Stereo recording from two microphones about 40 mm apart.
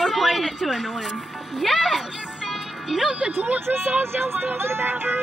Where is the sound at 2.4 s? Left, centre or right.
Centre.